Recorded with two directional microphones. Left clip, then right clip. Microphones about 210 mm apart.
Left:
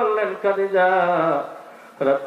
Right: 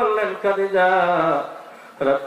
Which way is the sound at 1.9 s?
10° left (ahead or behind).